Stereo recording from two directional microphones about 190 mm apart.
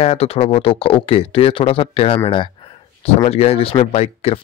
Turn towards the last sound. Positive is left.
turn(degrees=35)  # may be behind; listen again after turning